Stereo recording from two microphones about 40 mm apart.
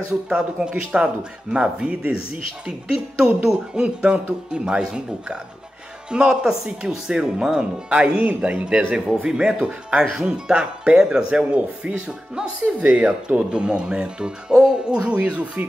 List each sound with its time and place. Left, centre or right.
0.3 s speech: right
10.1 s speech: centre
10.5 s speech: right
12.8 s speech: right
13.5 s speech: right